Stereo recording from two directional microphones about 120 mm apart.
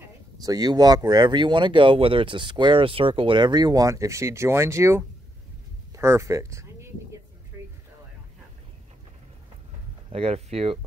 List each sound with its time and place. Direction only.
0.0 s speech: 30° right (ahead or behind)
5.9 s a sound: 20° right (ahead or behind)
10.0 s speech: 55° right (ahead or behind)